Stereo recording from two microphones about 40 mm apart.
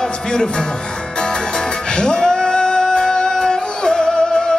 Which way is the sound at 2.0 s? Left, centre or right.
Centre.